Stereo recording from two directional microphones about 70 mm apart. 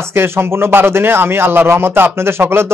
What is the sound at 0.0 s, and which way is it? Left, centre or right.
Speech, right.